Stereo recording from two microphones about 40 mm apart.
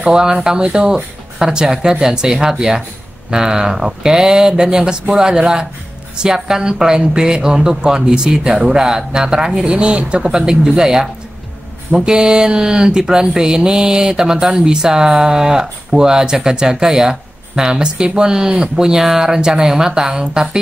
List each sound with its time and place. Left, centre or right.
0.0 s speech: right
11.9 s speech: right